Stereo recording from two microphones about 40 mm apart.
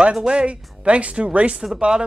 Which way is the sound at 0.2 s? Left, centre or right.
Right.